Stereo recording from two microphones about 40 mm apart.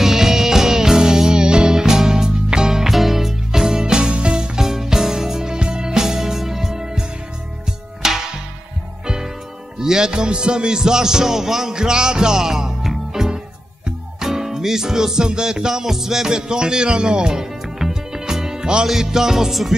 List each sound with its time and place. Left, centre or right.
0.0 s music: centre